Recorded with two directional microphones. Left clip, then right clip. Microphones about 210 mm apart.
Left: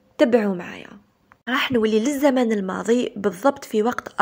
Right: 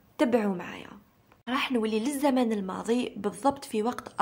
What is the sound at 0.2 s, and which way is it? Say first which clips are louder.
A woman's voice: left 8 dB; 20° left (ahead or behind).